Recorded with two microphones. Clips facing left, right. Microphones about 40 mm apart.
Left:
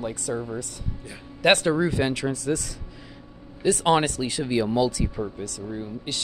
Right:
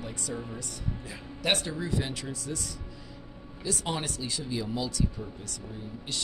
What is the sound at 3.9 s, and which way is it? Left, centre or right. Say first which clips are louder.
Speech: left 12 dB; left.